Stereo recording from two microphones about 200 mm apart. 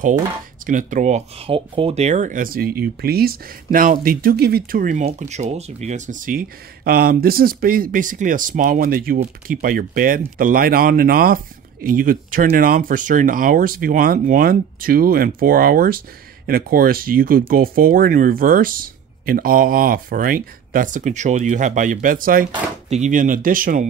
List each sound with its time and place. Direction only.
0.7 s speech: 40° right (ahead or behind)